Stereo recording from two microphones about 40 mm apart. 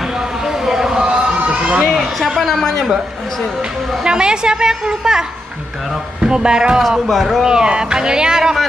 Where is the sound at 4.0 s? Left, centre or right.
Centre.